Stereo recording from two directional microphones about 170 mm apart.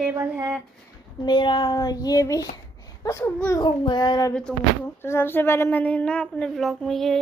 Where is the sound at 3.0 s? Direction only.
15° left (ahead or behind).